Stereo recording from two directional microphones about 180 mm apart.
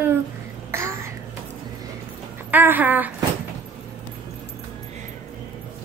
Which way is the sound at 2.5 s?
10° right (ahead or behind).